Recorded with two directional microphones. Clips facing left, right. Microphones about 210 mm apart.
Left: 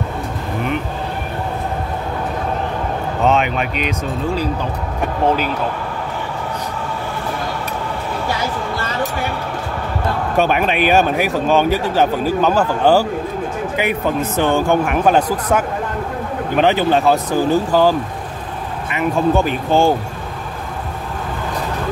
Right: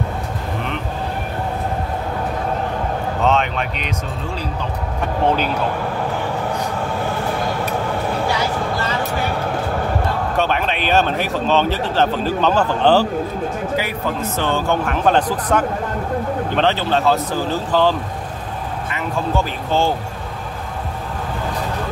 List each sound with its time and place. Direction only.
3.3 s speech: 10° left (ahead or behind)
10.3 s speech: 10° left (ahead or behind)
13.7 s speech: 20° left (ahead or behind)